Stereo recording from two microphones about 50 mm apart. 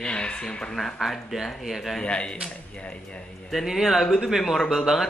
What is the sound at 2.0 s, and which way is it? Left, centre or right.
Speech, left.